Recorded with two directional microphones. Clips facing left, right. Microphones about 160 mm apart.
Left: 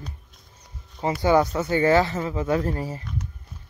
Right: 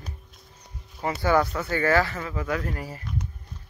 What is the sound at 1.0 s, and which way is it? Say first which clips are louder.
Speech: left 3 dB; 20° left (ahead or behind).